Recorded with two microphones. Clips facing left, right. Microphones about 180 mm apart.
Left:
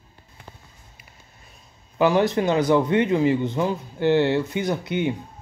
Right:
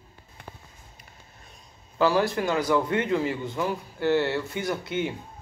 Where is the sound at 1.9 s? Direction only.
20° left (ahead or behind).